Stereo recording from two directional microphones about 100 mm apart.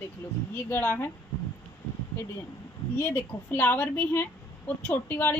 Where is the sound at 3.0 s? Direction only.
25° left (ahead or behind).